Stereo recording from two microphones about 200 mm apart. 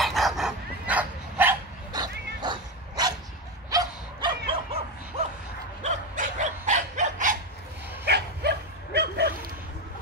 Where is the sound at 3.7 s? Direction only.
20° right (ahead or behind).